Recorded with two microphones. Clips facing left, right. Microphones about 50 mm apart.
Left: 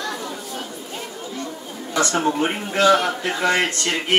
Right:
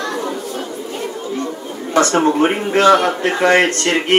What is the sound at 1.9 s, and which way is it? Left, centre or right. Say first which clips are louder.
A man's voice: right 7 dB; right.